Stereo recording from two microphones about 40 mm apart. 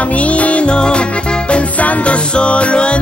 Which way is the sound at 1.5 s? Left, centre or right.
Left.